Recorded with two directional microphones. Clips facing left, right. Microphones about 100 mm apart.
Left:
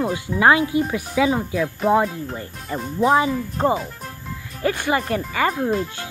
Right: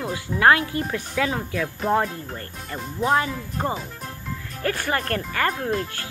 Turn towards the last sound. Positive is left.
turn(degrees=5)  # may be behind; listen again after turning